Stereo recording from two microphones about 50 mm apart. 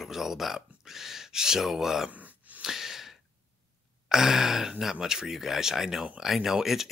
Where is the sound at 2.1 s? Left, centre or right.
Right.